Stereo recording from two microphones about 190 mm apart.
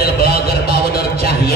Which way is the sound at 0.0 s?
55° left (ahead or behind).